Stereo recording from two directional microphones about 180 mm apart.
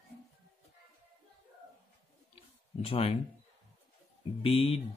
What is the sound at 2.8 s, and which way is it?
Speech, 35° left (ahead or behind).